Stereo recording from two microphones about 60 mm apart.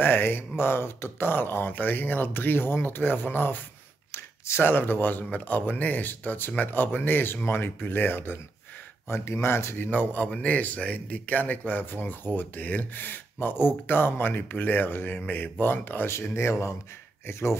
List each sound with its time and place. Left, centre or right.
0.0 s speech: left
4.1 s a sound: left
4.6 s speech: left
9.1 s speech: left
9.8 s speech: left
16.1 s speech: left